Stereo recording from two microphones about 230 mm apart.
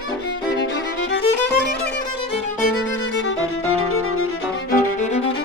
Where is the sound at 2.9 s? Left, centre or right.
Left.